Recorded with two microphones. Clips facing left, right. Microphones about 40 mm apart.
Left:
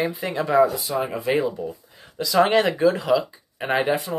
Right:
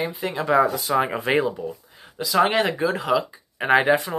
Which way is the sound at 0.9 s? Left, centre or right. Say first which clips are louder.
Right 2 dB; right.